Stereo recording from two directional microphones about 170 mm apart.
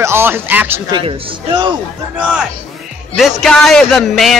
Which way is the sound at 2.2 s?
5° right (ahead or behind).